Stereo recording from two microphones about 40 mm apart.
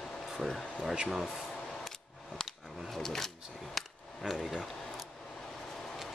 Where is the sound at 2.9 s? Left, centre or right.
Centre.